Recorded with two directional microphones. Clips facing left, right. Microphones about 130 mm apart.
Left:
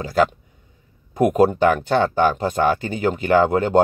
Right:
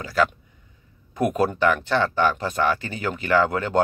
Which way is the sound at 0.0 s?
30° left (ahead or behind).